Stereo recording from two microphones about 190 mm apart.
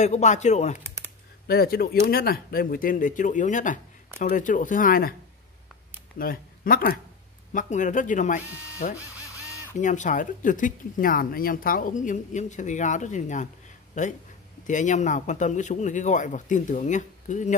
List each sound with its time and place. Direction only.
0.0 s speech: 40° left (ahead or behind)
0.7 s computer keyboard: 15° right (ahead or behind)
1.5 s speech: 55° left (ahead or behind)
6.1 s speech: 50° left (ahead or behind)
8.9 s a sound: 15° left (ahead or behind)
9.8 s speech: 40° left (ahead or behind)